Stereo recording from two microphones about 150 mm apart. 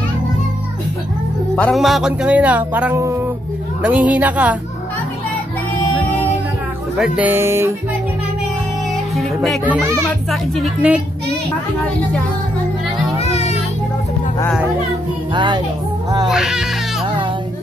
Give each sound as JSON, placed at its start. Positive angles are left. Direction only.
{"t": 1.5, "sound": "speech", "side_deg": 10}
{"t": 1.8, "sound": "speech", "side_deg": 0}
{"t": 7.0, "sound": "speech", "side_deg": -10}
{"t": 8.9, "sound": "music", "side_deg": 0}
{"t": 10.3, "sound": "a woman's voice", "side_deg": 0}
{"t": 13.2, "sound": "music", "side_deg": 45}
{"t": 15.3, "sound": "speech", "side_deg": -30}
{"t": 16.3, "sound": "a woman's voice", "side_deg": -5}